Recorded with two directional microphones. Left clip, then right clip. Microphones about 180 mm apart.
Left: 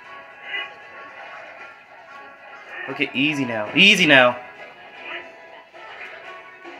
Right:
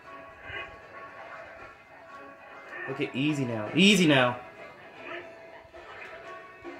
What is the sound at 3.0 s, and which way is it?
Speech, 50° right (ahead or behind).